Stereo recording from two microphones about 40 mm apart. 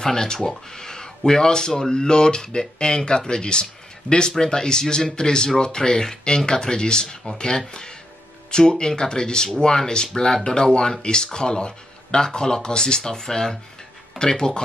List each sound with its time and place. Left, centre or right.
0.0 s speech: centre